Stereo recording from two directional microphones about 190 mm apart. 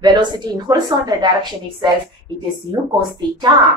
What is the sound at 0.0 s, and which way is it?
A woman's voice, 25° right (ahead or behind).